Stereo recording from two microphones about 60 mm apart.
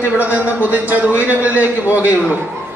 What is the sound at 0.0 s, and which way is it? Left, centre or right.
Speech, right.